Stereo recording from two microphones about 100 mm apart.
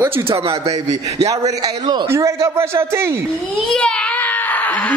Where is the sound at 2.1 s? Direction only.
30° right (ahead or behind).